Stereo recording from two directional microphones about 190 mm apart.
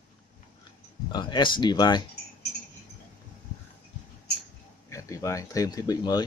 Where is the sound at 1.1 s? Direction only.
25° left (ahead or behind).